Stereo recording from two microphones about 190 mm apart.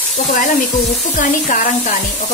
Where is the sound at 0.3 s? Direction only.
45° left (ahead or behind).